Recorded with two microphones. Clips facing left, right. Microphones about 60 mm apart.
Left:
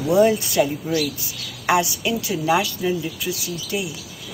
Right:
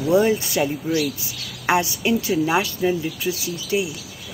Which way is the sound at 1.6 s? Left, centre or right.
Right.